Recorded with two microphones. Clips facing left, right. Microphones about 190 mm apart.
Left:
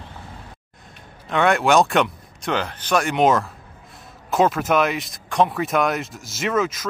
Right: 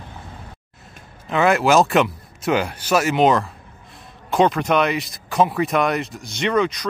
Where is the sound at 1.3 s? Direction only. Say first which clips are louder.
Right 1 dB; centre (ahead or behind).